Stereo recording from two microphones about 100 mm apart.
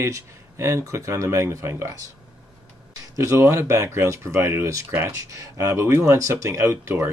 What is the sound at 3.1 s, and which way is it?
Speech, 30° right (ahead or behind).